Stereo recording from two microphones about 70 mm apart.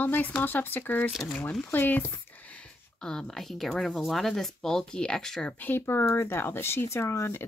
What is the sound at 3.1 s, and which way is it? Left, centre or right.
Speech, centre.